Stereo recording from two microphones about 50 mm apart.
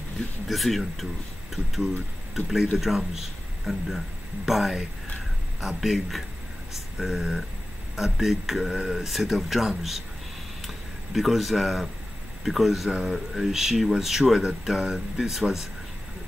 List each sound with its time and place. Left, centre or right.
0.5 s speech: centre
2.3 s a man's voice: centre